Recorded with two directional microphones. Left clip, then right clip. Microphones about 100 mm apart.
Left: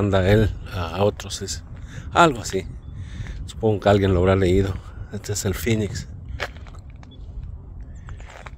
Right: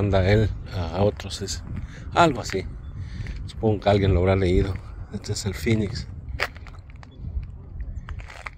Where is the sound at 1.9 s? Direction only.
45° left (ahead or behind).